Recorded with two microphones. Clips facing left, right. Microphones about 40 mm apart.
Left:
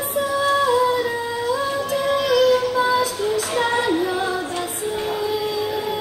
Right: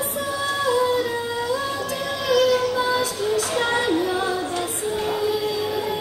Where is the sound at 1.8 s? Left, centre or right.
Left.